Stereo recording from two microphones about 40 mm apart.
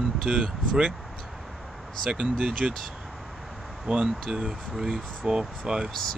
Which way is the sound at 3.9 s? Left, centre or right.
Centre.